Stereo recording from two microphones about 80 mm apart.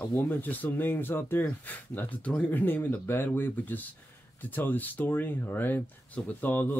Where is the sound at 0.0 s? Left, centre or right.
Left.